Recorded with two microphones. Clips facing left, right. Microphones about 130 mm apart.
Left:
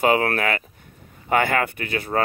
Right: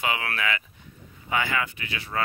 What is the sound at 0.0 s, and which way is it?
Speech, 45° left (ahead or behind).